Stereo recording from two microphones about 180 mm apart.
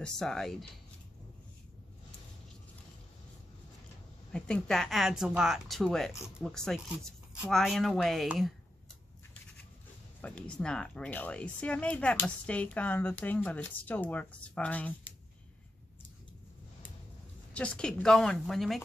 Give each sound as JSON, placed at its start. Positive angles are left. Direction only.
{"t": 0.0, "sound": "speech", "side_deg": 5}
{"t": 4.3, "sound": "speech", "side_deg": 5}
{"t": 10.2, "sound": "speech", "side_deg": 5}
{"t": 17.6, "sound": "speech", "side_deg": 5}